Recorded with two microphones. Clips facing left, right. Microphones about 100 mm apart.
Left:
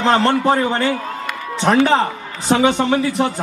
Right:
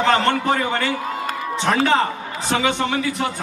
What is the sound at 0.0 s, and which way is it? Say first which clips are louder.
Speech: left 3 dB; 30° left (ahead or behind).